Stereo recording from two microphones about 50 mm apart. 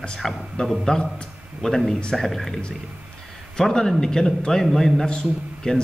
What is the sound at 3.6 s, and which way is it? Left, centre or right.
A man's voice, centre.